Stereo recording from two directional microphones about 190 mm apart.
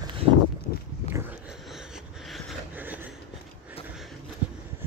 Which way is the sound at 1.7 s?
5° right (ahead or behind).